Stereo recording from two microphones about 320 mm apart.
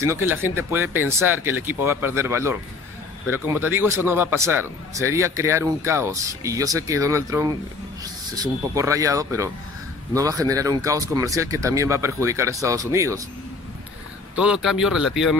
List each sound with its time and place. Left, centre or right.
0.0 s speech: centre
14.3 s speech: centre